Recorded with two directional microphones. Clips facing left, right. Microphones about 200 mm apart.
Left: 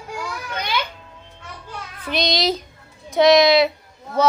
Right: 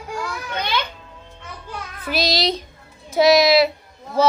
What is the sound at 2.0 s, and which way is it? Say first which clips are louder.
Child singing: even; 5° right (ahead or behind).